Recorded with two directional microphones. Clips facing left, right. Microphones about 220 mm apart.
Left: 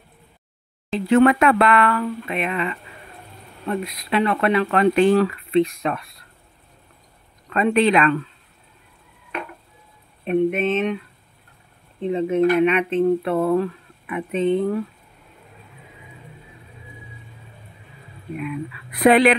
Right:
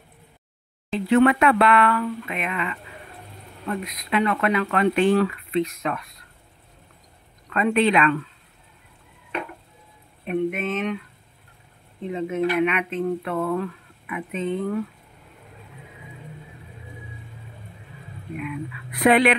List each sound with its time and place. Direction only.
0.9 s speech: 40° left (ahead or behind)
7.5 s speech: 35° left (ahead or behind)
10.2 s speech: 25° left (ahead or behind)
12.1 s speech: 30° left (ahead or behind)
18.9 s speech: 35° left (ahead or behind)